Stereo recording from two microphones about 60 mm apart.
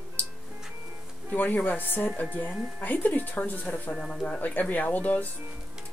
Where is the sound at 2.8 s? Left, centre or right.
Left.